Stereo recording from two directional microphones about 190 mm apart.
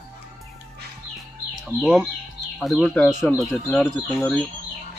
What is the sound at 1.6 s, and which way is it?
Speech, centre (ahead or behind).